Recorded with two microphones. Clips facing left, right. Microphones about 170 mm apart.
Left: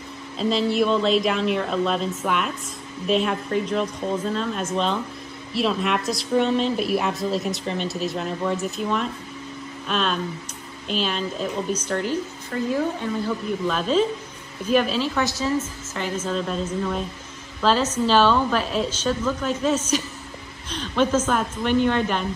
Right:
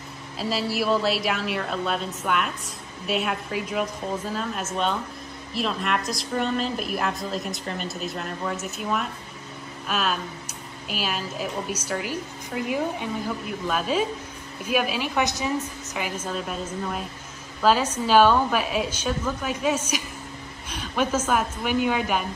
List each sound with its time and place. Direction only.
0.4 s a woman's voice: 5° right (ahead or behind)